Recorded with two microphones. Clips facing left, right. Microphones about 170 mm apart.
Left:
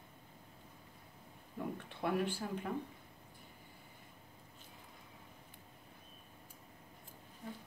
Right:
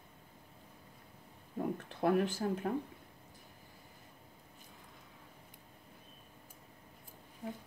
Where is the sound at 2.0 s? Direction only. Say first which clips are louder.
Right 5 dB; 45° right (ahead or behind).